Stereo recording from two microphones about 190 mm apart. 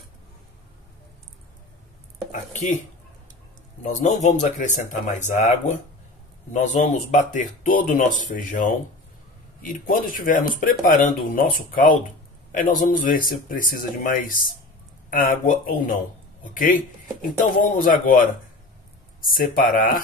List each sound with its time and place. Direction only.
2.5 s speech: 40° left (ahead or behind)
3.8 s speech: 40° left (ahead or behind)